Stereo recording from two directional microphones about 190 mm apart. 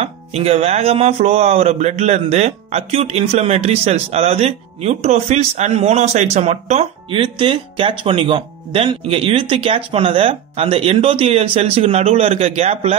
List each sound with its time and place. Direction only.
0.0 s speech: 30° right (ahead or behind)